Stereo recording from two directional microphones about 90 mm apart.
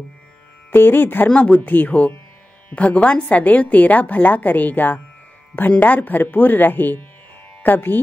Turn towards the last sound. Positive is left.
turn(degrees=20)  # may be behind; listen again after turning